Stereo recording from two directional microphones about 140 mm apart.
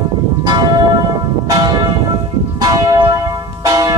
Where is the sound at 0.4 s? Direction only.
30° right (ahead or behind).